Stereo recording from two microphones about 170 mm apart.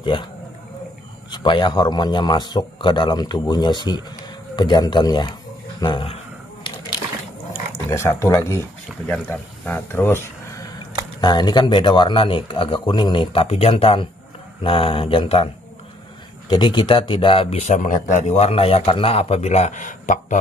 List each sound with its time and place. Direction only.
1.3 s speech: 25° left (ahead or behind)
7.9 s speech: 15° left (ahead or behind)
11.1 s speech: 25° left (ahead or behind); by 20.3 s 50° left (ahead or behind)